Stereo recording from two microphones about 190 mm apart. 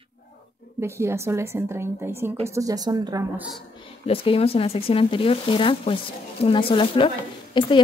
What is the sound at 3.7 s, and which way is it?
Speech, 30° left (ahead or behind).